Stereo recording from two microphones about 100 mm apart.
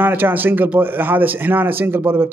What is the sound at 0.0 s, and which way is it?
A man's voice, 20° right (ahead or behind).